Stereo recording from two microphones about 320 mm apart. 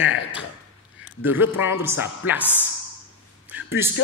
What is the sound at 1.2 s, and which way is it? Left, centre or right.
A man's voice, centre.